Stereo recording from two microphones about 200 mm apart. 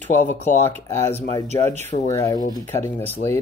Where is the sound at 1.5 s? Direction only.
35° right (ahead or behind).